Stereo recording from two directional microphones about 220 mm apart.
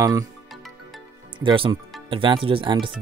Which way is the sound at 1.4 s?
25° right (ahead or behind).